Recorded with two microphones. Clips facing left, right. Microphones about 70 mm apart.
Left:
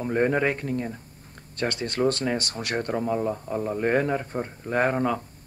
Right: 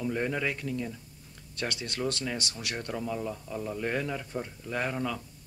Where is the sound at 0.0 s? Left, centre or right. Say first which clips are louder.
Left 7 dB; left.